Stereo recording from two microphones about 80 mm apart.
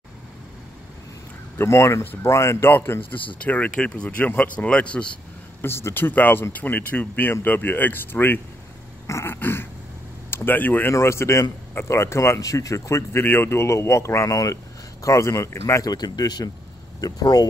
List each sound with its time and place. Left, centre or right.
1.6 s speech: left
3.4 s speech: centre
5.6 s speech: left
10.9 s speech: left
15.8 s speech: left